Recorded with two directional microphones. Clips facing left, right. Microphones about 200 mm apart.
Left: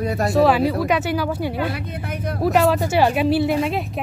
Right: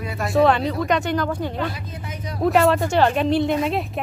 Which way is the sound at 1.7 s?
60° left (ahead or behind).